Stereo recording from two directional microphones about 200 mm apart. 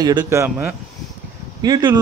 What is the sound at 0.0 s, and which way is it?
A man's voice, 20° right (ahead or behind).